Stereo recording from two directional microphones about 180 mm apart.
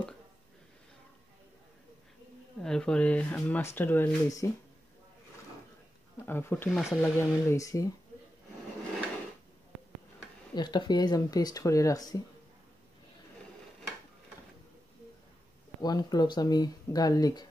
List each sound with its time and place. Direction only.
2.6 s speech: 5° left (ahead or behind)
6.2 s speech: 10° left (ahead or behind)
10.5 s speech: 25° left (ahead or behind)
15.8 s speech: 20° left (ahead or behind)